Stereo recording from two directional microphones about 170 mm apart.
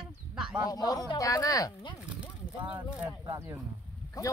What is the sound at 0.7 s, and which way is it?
Speech, 20° left (ahead or behind).